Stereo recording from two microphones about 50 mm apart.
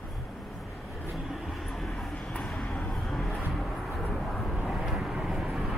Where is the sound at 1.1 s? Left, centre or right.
Centre.